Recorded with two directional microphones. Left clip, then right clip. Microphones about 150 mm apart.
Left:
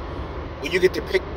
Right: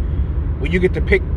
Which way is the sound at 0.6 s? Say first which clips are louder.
Right 1 dB; 20° left (ahead or behind).